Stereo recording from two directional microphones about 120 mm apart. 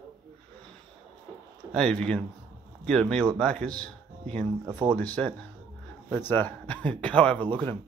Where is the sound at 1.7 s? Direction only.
5° left (ahead or behind).